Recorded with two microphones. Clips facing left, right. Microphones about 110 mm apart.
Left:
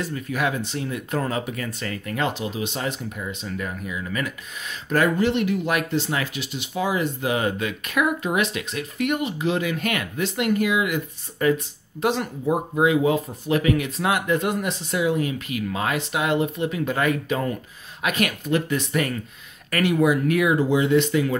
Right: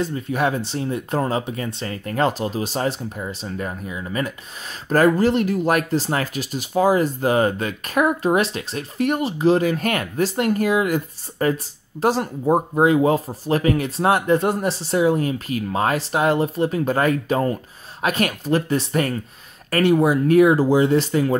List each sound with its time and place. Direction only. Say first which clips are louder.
0.0 s speech: right 4 dB; 30° right (ahead or behind)